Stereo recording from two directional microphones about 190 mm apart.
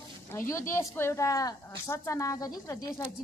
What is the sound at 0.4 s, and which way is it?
Speech, 15° left (ahead or behind).